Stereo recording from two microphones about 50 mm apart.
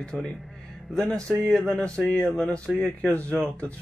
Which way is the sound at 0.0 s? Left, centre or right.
Centre.